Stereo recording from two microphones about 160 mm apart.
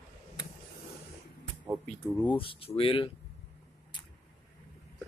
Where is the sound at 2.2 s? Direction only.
35° left (ahead or behind).